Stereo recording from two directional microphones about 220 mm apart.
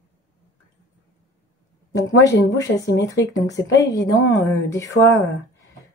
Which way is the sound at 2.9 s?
15° left (ahead or behind).